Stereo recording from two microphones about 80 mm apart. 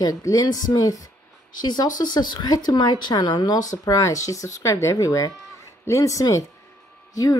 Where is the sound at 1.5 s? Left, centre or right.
Left.